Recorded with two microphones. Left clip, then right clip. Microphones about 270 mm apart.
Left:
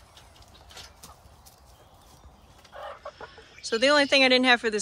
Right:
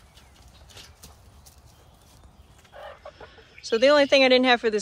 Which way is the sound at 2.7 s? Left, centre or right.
Left.